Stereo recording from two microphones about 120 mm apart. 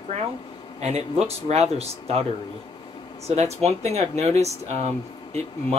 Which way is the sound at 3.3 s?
65° right (ahead or behind).